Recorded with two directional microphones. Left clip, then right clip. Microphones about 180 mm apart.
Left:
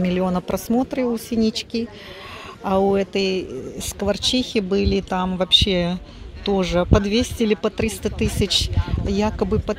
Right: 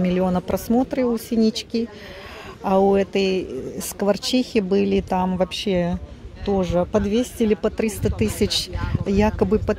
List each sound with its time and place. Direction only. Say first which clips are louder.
0.0 s speech: right 1 dB; 5° right (ahead or behind)